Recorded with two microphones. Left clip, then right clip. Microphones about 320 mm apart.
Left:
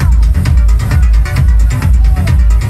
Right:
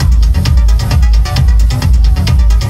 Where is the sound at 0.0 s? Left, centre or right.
Centre.